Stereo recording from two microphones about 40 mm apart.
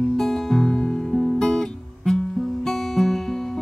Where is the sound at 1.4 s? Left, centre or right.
Centre.